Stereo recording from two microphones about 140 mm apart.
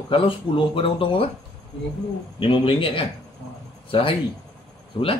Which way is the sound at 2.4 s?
40° left (ahead or behind).